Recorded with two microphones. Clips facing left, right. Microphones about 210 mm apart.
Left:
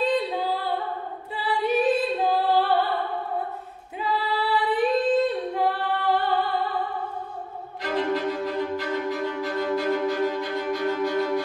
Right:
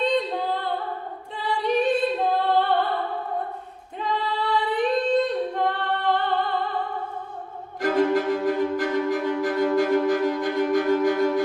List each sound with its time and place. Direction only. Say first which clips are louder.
0.0 s female singing: even; 5° left (ahead or behind)
1.3 s music: even; 5° left (ahead or behind)
4.0 s female singing: even; 5° left (ahead or behind)
7.8 s cello: right 5 dB; 45° right (ahead or behind)